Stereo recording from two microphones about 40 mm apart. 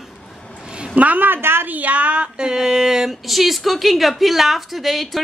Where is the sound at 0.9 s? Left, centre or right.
Right.